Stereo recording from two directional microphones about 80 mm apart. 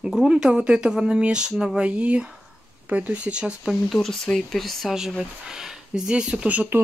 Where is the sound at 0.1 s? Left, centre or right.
Centre.